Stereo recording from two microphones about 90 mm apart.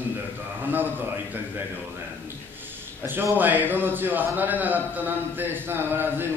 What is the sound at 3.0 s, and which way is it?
A man's voice, 25° right (ahead or behind).